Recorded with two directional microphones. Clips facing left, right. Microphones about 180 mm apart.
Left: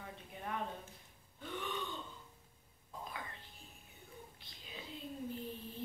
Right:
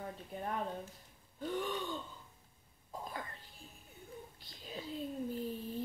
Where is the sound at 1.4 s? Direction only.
40° right (ahead or behind).